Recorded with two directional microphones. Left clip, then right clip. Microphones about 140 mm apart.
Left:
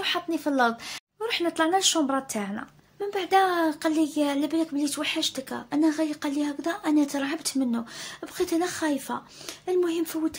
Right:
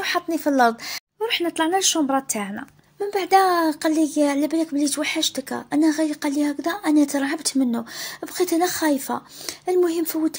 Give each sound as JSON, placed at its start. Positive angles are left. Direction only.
{"t": 0.0, "sound": "a woman's voice", "side_deg": -30}